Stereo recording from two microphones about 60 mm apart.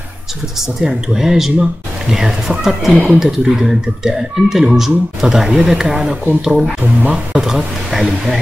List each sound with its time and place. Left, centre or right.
0.6 s speech: centre
6.8 s speech: right
7.4 s speech: centre